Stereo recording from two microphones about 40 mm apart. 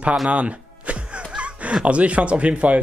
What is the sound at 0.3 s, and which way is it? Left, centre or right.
Music, right.